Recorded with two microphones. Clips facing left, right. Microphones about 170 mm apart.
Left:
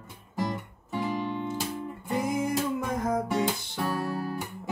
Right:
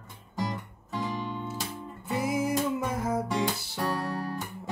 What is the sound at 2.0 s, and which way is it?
Music, 5° right (ahead or behind).